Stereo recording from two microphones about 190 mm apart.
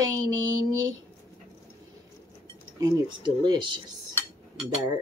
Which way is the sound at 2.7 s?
20° right (ahead or behind).